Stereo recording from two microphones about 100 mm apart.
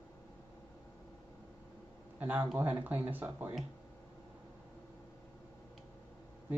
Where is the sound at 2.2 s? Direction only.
15° right (ahead or behind).